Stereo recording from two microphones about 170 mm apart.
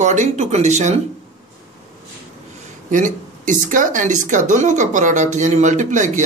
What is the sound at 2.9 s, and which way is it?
A man's voice, 50° right (ahead or behind).